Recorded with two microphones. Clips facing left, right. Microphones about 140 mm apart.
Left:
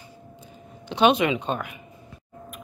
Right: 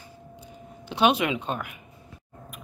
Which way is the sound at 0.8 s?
5° right (ahead or behind).